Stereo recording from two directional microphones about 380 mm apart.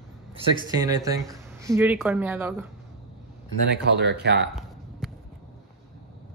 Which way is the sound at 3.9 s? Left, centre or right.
Right.